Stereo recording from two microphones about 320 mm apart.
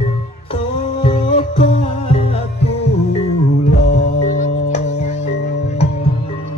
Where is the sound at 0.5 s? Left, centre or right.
Centre.